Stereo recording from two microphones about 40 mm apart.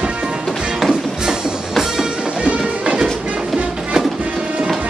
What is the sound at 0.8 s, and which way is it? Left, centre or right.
Music, centre.